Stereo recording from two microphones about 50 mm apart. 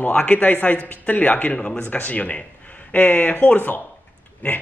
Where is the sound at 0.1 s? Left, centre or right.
Centre.